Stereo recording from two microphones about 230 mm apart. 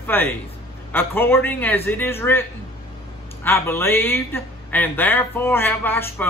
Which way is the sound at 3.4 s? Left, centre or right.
Centre.